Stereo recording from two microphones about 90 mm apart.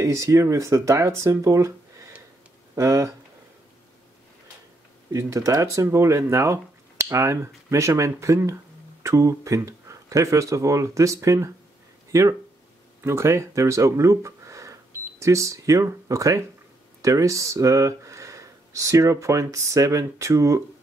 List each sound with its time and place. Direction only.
0.0 s speech: 35° right (ahead or behind)
2.7 s speech: 35° right (ahead or behind)
5.1 s speech: 35° right (ahead or behind)